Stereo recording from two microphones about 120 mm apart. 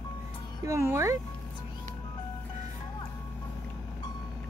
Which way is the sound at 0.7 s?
25° right (ahead or behind).